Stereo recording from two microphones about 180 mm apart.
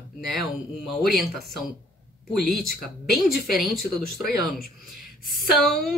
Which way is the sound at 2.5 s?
Centre (ahead or behind).